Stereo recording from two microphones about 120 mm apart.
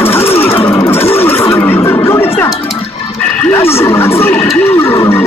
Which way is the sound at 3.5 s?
20° left (ahead or behind).